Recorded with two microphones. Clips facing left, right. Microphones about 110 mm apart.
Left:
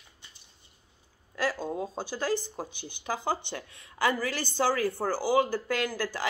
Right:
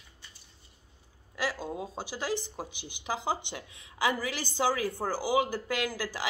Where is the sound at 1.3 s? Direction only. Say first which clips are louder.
Left 3 dB; 10° right (ahead or behind).